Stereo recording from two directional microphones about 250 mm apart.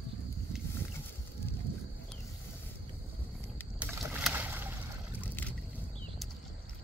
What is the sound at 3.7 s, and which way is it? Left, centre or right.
Boat, centre.